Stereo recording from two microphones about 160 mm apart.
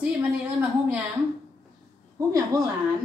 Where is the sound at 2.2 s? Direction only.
20° right (ahead or behind).